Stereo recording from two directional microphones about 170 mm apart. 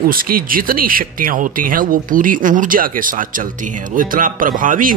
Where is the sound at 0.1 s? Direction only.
60° right (ahead or behind).